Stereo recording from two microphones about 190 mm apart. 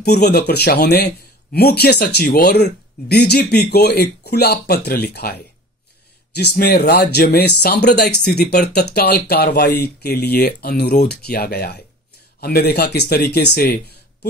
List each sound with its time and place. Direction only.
0.0 s speech: 60° left (ahead or behind)
6.3 s speech: 55° left (ahead or behind)